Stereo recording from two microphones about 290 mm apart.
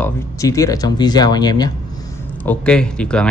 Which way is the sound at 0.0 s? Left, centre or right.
Centre.